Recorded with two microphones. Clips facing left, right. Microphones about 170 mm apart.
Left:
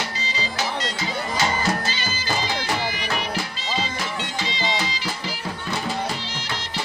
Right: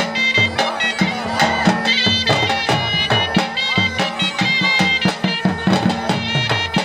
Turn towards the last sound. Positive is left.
turn(degrees=-70)  # may be behind; listen again after turning